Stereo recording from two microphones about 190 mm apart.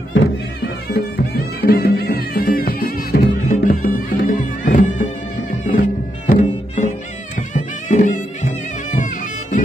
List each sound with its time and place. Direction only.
0.1 s music: 60° left (ahead or behind); by 8.5 s 40° left (ahead or behind)
8.9 s bagpipes: 40° left (ahead or behind)